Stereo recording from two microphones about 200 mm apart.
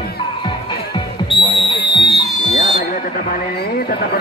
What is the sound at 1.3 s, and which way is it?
Music, 25° left (ahead or behind).